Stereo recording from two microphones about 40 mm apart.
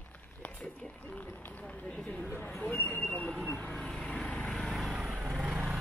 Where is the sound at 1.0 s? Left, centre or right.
Left.